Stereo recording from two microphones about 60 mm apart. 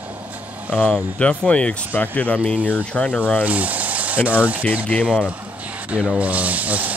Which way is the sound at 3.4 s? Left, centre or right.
Right.